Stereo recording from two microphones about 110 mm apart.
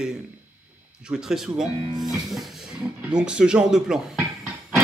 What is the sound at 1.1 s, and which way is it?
A man's voice, 5° right (ahead or behind).